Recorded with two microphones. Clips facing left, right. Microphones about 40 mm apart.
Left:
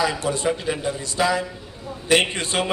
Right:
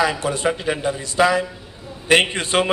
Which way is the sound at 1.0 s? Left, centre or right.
Right.